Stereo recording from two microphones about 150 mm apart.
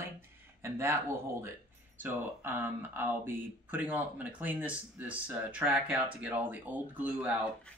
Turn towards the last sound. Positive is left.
turn(degrees=-10)  # may be behind; listen again after turning